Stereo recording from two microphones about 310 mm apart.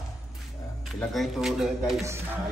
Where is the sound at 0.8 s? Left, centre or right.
Centre.